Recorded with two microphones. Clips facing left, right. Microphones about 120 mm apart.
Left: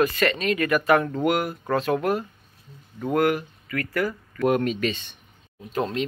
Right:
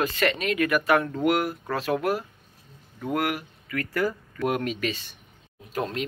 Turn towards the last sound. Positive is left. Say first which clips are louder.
# left 3 dB
turn(degrees=-5)  # may be behind; listen again after turning